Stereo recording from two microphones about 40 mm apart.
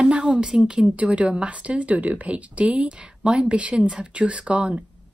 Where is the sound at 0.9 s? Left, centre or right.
Right.